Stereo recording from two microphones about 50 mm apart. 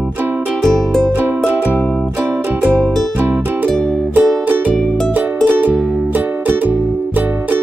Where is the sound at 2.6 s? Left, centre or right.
Right.